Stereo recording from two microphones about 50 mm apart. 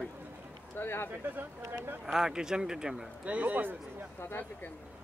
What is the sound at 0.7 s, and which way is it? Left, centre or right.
Speech, left.